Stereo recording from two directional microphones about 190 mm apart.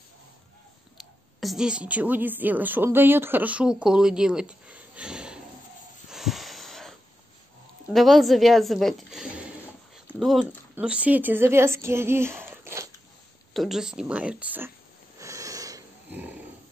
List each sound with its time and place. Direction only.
1.4 s speech: centre (ahead or behind)
6.0 s wheeze: centre (ahead or behind)
7.9 s speech: centre (ahead or behind)
13.5 s speech: centre (ahead or behind)
15.1 s wheeze: 15° right (ahead or behind)